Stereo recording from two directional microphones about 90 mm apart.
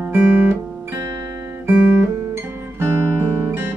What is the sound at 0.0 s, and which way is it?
Guitar, 15° right (ahead or behind).